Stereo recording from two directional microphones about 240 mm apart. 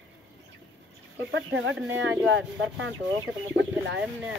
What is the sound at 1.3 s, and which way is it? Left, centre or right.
Speech, right.